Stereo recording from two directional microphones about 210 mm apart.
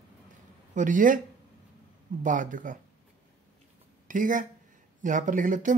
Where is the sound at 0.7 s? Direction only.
40° right (ahead or behind).